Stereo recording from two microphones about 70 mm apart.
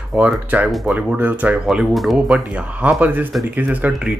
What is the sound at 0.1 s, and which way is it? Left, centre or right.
Speech, centre.